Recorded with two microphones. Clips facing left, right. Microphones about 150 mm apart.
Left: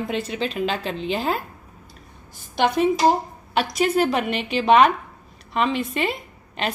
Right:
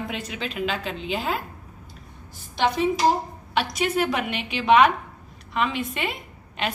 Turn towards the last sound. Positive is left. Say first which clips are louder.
# left 2 dB
turn(degrees=35)  # may be behind; listen again after turning